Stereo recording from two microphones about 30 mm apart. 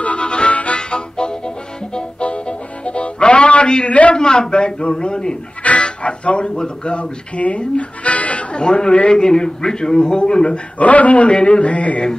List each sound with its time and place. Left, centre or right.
0.0 s harmonica: left
0.7 s music: left
3.6 s a man's voice: left
5.6 s music: left
6.0 s music: left
6.5 s speech: left
6.9 s speech: left
8.5 s speech: left
10.8 s a man's voice: left
11.3 s a man's voice: left
11.6 s a man's voice: left